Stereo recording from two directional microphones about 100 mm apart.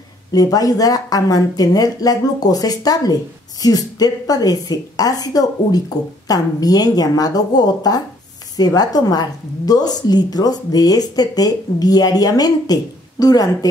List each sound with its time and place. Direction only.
0.3 s a woman's voice: 40° left (ahead or behind)